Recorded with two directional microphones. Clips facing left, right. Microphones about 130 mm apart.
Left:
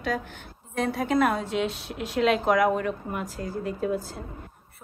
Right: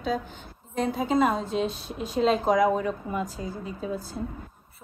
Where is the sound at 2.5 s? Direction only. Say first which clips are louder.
Even; 60° left (ahead or behind).